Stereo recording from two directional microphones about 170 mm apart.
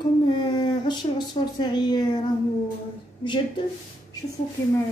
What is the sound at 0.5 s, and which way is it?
Speech, 25° left (ahead or behind).